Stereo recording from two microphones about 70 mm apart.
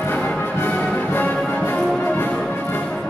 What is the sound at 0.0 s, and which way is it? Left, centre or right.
Music, left.